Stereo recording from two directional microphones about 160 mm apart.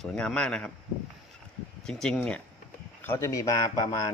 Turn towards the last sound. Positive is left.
turn(degrees=25)  # may be behind; listen again after turning